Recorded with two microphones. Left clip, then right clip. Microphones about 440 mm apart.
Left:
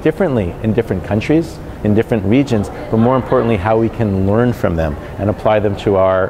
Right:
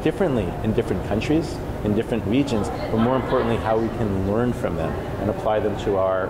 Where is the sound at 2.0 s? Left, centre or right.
Left.